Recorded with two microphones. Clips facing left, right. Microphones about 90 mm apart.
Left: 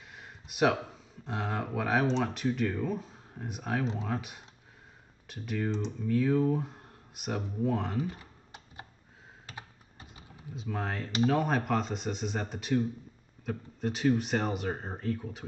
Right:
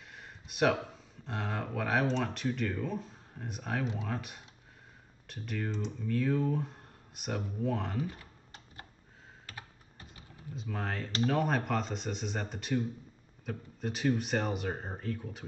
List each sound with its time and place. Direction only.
0.1 s speech: centre (ahead or behind)
9.5 s computer keyboard: 20° left (ahead or behind)
10.5 s speech: centre (ahead or behind)